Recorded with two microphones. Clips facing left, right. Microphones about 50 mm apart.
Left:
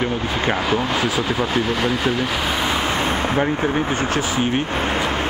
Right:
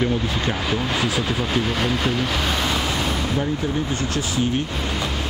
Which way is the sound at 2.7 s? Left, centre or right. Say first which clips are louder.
Left 3 dB; left.